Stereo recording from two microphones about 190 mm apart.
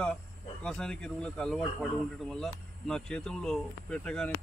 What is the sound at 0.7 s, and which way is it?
Speech, 5° left (ahead or behind).